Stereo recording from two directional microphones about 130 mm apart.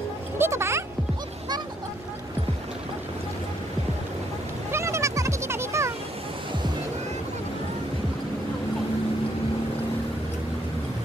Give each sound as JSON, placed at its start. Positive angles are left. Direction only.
{"t": 0.4, "sound": "music", "side_deg": -20}
{"t": 4.6, "sound": "music", "side_deg": -20}